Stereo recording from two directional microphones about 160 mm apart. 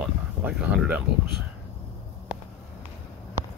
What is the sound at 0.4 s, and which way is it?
Speech, 10° right (ahead or behind).